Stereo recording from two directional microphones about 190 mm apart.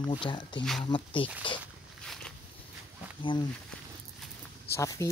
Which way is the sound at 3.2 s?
25° left (ahead or behind).